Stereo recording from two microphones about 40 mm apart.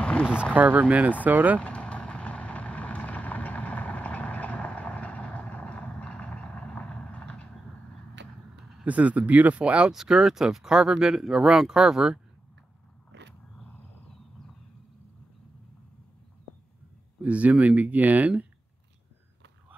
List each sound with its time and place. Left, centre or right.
0.3 s speech: right
0.6 s speech: right
1.8 s vehicle: left
8.8 s speech: right
9.6 s speech: right
9.9 s speech: centre
17.2 s speech: right